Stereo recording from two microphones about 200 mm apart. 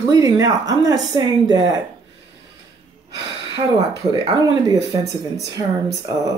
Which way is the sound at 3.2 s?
60° right (ahead or behind).